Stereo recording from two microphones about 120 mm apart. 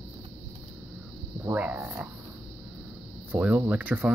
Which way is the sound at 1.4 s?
15° right (ahead or behind).